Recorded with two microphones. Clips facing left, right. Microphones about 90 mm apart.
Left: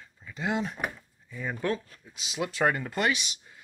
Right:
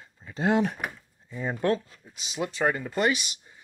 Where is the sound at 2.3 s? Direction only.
Centre (ahead or behind).